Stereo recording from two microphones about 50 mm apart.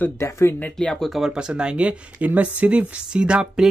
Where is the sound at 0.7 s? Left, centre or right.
Centre.